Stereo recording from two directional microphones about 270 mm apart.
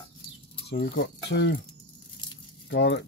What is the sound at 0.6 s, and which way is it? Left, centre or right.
Speech, left.